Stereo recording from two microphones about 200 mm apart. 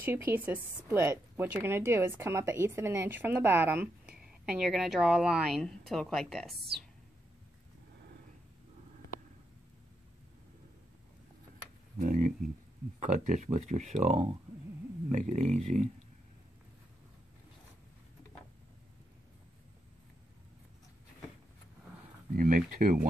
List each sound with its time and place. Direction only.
0.0 s a woman's voice: 10° right (ahead or behind)
12.0 s speech: 40° right (ahead or behind)
22.3 s speech: 45° right (ahead or behind)